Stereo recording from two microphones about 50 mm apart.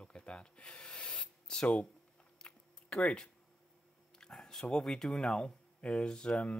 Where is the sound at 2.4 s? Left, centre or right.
Centre.